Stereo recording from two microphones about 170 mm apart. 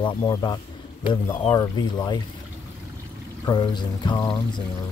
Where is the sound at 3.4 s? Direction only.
25° left (ahead or behind).